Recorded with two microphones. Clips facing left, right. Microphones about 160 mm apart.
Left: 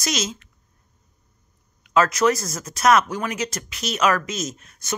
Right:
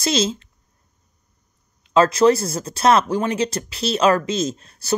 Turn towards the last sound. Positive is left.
turn(degrees=-30)  # may be behind; listen again after turning